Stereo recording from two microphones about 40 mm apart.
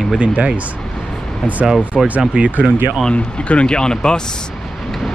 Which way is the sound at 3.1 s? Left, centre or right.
Left.